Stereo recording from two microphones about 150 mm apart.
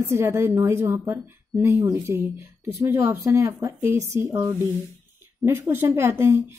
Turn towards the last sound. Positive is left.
turn(degrees=-15)  # may be behind; listen again after turning